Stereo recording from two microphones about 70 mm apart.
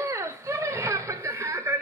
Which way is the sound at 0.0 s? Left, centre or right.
Right.